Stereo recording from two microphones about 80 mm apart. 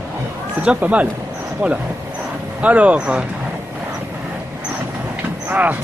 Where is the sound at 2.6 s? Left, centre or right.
Centre.